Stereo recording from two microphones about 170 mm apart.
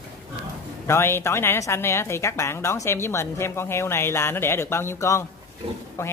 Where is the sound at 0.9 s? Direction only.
15° left (ahead or behind).